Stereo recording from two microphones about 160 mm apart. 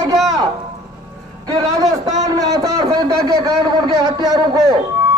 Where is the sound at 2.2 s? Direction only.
20° right (ahead or behind).